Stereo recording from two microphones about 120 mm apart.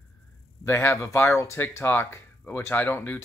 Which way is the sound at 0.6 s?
20° left (ahead or behind).